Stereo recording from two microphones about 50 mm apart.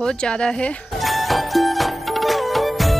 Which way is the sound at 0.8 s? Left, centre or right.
Centre.